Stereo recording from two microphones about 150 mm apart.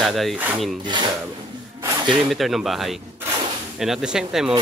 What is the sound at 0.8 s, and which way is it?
Speech, 30° right (ahead or behind).